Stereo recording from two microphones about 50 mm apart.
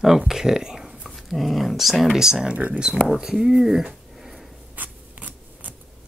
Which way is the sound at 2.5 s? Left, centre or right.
Right.